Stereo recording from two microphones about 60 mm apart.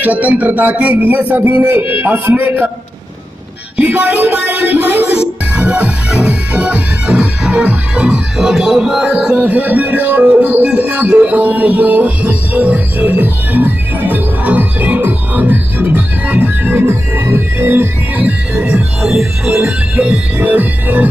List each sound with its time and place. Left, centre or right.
0.0 s music: right
1.7 s music: right
3.7 s music: right
5.7 s music: centre
7.1 s music: centre
8.4 s music: centre
19.0 s music: centre
20.0 s music: right